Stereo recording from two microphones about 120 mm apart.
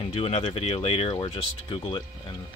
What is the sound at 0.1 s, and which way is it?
Speech, 55° left (ahead or behind).